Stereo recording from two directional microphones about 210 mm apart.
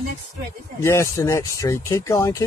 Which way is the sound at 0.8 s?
15° left (ahead or behind).